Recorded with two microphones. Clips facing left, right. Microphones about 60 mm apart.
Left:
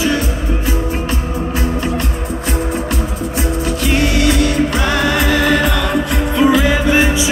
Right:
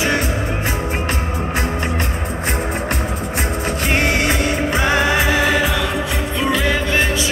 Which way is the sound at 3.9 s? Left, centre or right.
Right.